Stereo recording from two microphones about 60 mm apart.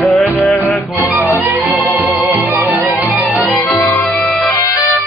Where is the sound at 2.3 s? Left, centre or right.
Right.